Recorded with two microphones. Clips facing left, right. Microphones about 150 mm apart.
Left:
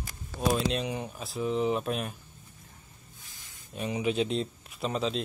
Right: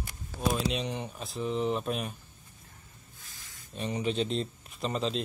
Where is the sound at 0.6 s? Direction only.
Centre (ahead or behind).